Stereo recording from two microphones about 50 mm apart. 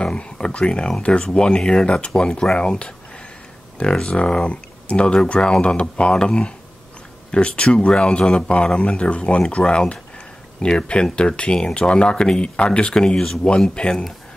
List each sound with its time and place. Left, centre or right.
0.0 s speech: left
4.0 s speech: left